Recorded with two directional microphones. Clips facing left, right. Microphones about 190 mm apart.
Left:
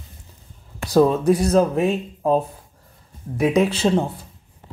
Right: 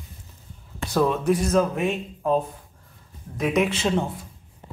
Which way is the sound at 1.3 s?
35° left (ahead or behind).